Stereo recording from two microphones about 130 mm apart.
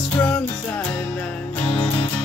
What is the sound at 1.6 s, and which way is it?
Music, 50° left (ahead or behind).